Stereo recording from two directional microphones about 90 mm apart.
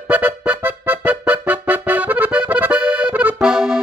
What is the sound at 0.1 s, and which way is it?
Music, 20° right (ahead or behind).